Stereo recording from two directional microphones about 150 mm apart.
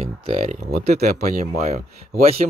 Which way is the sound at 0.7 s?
90° right.